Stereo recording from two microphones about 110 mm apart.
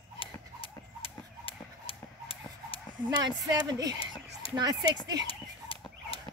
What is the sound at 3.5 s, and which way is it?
Speech, 35° right (ahead or behind).